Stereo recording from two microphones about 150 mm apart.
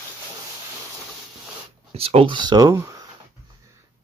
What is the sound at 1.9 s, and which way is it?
Speech, 40° right (ahead or behind).